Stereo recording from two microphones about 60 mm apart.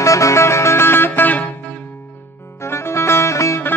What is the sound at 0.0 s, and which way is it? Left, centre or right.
Music, left.